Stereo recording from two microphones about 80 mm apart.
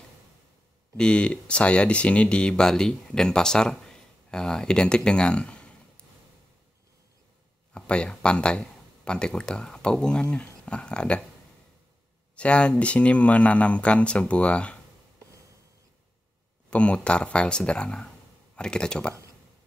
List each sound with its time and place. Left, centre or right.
0.9 s speech: centre
7.7 s speech: centre
12.4 s speech: centre
16.7 s speech: centre